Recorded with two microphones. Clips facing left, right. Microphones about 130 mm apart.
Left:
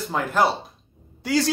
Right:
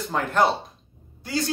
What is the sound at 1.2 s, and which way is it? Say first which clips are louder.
Speech: left 5 dB; 90° left.